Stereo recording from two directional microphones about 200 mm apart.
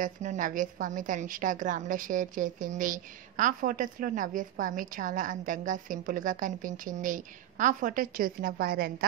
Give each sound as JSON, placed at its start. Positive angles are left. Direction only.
{"t": 0.0, "sound": "a woman's voice", "side_deg": -40}